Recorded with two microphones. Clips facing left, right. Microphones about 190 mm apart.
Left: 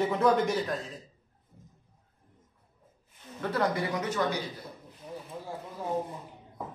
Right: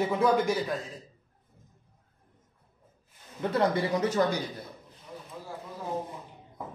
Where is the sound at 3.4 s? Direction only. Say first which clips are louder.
Right 3 dB; 25° right (ahead or behind).